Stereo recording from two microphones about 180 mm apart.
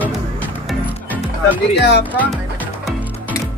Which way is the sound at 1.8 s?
65° left (ahead or behind).